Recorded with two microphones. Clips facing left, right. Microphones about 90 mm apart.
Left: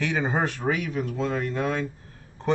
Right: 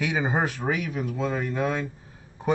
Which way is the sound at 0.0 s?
5° right (ahead or behind).